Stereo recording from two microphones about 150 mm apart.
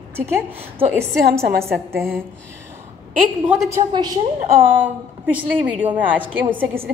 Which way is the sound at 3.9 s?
30° right (ahead or behind).